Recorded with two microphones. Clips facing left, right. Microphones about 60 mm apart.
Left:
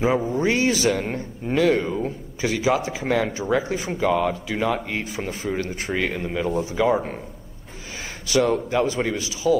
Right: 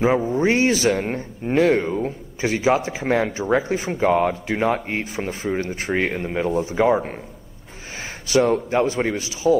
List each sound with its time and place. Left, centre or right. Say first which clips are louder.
0.0 s a man's voice: right 2 dB; right
8.3 s a man's voice: right 2 dB; right